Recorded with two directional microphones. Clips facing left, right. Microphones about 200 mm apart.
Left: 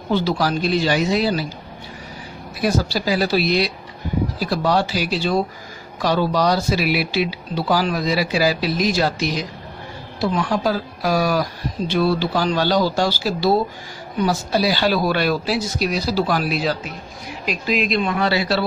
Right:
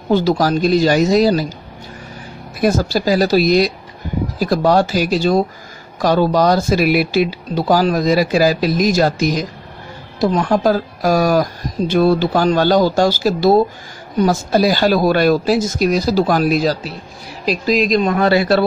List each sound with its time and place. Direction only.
0.1 s speech: 45° right (ahead or behind)
2.6 s speech: 45° right (ahead or behind)